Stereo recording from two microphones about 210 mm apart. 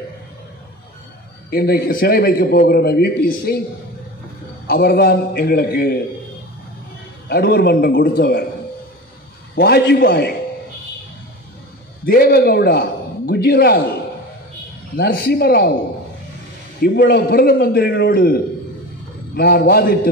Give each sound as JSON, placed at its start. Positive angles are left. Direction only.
{"t": 1.5, "sound": "a man's voice", "side_deg": 45}
{"t": 4.6, "sound": "a man's voice", "side_deg": 50}
{"t": 7.2, "sound": "a man's voice", "side_deg": 50}
{"t": 9.6, "sound": "a man's voice", "side_deg": 50}
{"t": 12.1, "sound": "a man's voice", "side_deg": 45}
{"t": 15.0, "sound": "a man's voice", "side_deg": 50}
{"t": 16.8, "sound": "a man's voice", "side_deg": 50}